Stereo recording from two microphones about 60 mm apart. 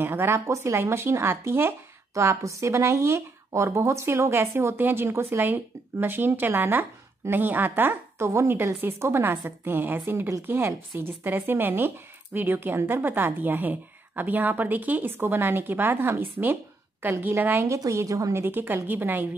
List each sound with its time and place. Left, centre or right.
0.0 s a woman's voice: right
0.5 s speech: right
2.1 s speech: right
5.4 s a woman's voice: right
8.2 s a woman's voice: right
17.6 s a woman's voice: right
18.3 s a woman's voice: right